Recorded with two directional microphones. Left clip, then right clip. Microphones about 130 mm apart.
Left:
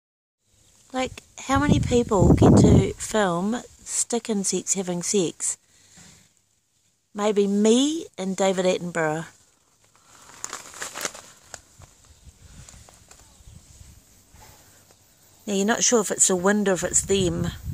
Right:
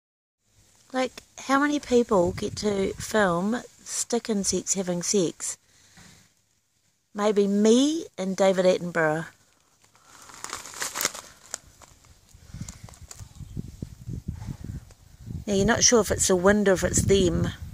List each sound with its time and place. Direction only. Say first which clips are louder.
0.8 s speech: even; centre (ahead or behind)
7.2 s speech: left 1 dB; centre (ahead or behind)
10.3 s crumpling: even; 90° right
12.9 s clip-clop: right 1 dB; 90° right
15.4 s speech: right 1 dB; 5° right (ahead or behind)